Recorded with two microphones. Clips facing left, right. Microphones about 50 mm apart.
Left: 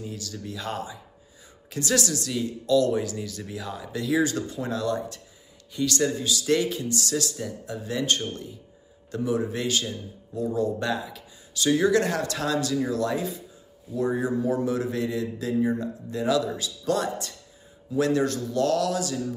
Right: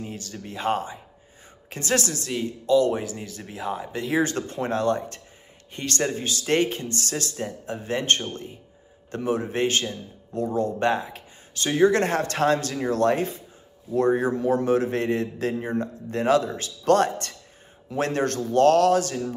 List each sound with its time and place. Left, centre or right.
0.0 s a man's voice: right
17.9 s a man's voice: right